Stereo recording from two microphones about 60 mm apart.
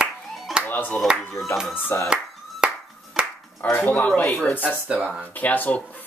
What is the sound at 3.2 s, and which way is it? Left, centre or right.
Finger snapping, centre.